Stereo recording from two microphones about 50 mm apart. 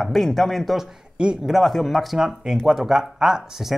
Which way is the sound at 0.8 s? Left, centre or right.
Centre.